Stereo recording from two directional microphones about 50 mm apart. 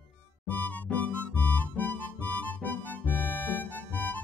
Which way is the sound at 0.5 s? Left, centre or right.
Left.